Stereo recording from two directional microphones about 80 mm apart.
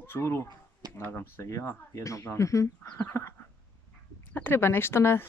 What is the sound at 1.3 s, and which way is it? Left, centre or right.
Speech, left.